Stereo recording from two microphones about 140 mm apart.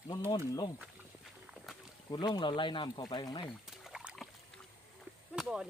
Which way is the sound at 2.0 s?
30° left (ahead or behind).